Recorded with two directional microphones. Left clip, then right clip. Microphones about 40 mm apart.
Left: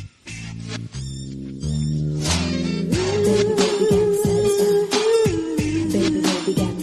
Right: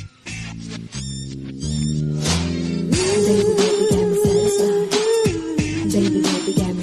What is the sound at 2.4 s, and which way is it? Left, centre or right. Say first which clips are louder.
Music: even; right.